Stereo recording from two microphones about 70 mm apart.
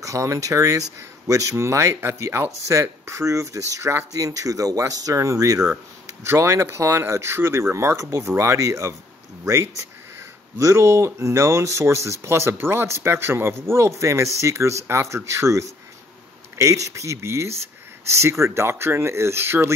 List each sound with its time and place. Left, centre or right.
0.0 s speech: right
6.2 s speech: right